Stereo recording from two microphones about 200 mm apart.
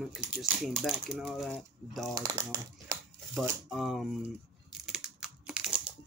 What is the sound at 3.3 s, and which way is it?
Speech, centre (ahead or behind).